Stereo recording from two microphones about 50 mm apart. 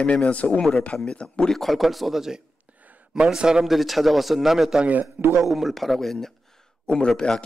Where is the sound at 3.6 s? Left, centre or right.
Centre.